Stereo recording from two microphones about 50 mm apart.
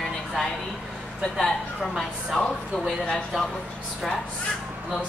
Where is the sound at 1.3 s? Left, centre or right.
Centre.